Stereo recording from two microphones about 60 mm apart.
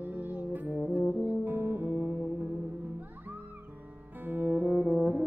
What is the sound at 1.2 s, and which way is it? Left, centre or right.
Music, right.